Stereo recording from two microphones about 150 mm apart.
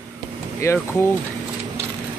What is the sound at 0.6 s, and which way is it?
Speech, 20° left (ahead or behind).